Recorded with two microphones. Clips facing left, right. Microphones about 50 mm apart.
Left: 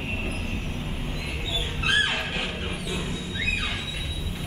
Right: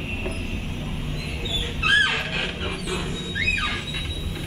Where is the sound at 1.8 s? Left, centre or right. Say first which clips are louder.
Right 4 dB; right.